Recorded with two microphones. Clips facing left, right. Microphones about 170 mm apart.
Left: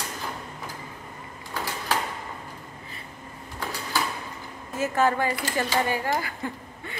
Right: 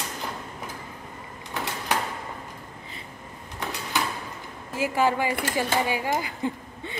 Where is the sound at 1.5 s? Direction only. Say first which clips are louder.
Even; 20° right (ahead or behind).